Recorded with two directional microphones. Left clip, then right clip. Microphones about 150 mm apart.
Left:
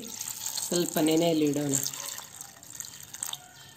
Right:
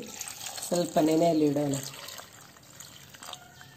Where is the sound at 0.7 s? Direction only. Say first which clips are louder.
Right 2 dB; 15° right (ahead or behind).